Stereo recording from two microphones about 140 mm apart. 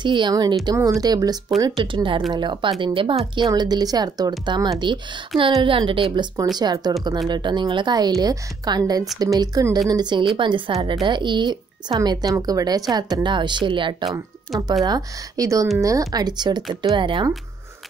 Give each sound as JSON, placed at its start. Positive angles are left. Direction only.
{"t": 0.0, "sound": "a woman's voice", "side_deg": -35}
{"t": 6.1, "sound": "a woman's voice", "side_deg": -25}
{"t": 14.5, "sound": "speech", "side_deg": 0}
{"t": 14.9, "sound": "a woman's voice", "side_deg": -25}